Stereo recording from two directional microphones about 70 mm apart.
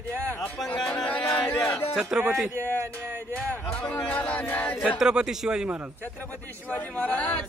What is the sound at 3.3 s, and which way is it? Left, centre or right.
Speech, centre.